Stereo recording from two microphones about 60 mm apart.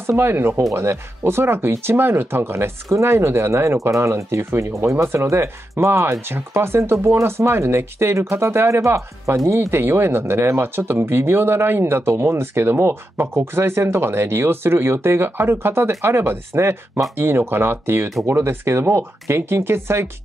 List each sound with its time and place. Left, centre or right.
0.0 s speech: right